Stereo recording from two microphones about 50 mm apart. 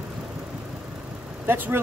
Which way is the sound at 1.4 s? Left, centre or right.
Right.